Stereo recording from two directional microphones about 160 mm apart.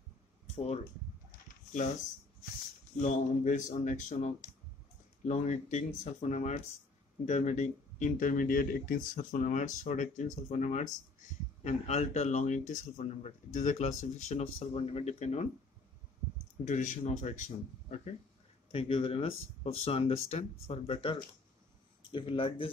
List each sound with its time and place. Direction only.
3.0 s speech: 50° left (ahead or behind)
16.6 s speech: 50° left (ahead or behind)
18.7 s speech: 35° left (ahead or behind)